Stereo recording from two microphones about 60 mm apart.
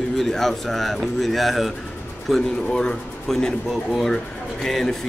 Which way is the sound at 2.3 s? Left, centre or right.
Centre.